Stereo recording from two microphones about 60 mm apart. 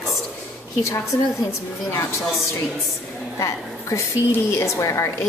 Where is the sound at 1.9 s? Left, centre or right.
Left.